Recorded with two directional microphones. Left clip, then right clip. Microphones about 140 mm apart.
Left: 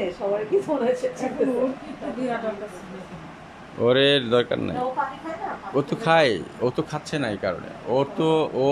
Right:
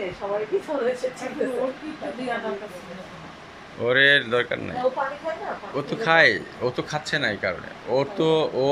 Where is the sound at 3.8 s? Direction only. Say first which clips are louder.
Right 1 dB; 25° left (ahead or behind).